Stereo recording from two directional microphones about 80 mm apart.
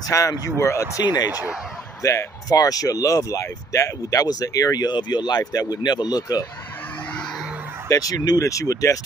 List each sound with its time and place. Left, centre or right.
0.0 s speech: left
0.6 s speech: left
2.0 s speech: left
7.9 s speech: left